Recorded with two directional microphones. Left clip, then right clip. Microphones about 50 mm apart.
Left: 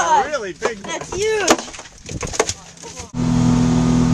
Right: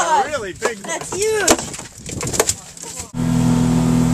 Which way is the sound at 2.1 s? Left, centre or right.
Centre.